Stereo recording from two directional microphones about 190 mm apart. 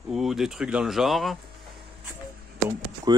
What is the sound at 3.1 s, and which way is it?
Speech, 20° right (ahead or behind).